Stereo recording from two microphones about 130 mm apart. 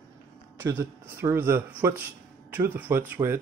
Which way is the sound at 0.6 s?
20° right (ahead or behind).